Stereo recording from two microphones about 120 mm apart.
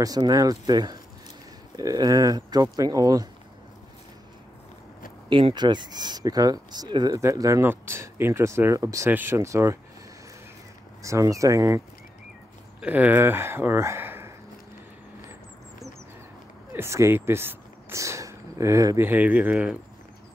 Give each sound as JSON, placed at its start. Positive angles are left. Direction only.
{"t": 0.0, "sound": "speech", "side_deg": -30}
{"t": 5.3, "sound": "speech", "side_deg": -40}
{"t": 11.0, "sound": "speech", "side_deg": -25}
{"t": 12.8, "sound": "speech", "side_deg": -15}
{"t": 16.7, "sound": "speech", "side_deg": -25}